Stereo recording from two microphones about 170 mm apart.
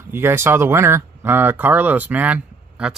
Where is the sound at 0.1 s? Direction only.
15° right (ahead or behind).